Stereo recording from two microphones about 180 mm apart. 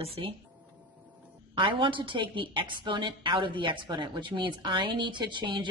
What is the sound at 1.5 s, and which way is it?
A woman's voice, 25° right (ahead or behind).